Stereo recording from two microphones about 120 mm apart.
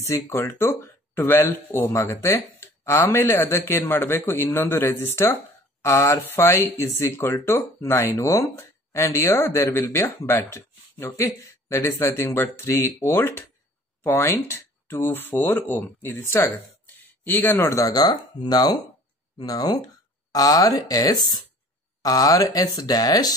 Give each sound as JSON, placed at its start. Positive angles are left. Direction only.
{"t": 0.0, "sound": "speech", "side_deg": 20}